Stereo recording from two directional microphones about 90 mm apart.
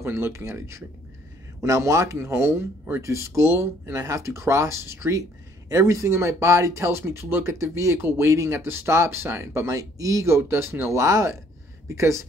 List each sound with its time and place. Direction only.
0.0 s speech: 30° right (ahead or behind)